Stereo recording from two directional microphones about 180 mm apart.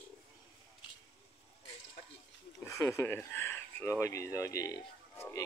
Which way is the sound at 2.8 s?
15° left (ahead or behind).